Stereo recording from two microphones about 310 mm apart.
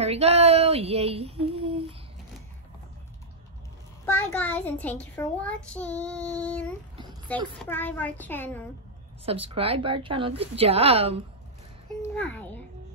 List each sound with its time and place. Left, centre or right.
0.0 s a sound: centre
4.0 s a child's voice: centre
9.2 s a woman's voice: centre
12.0 s a child's voice: centre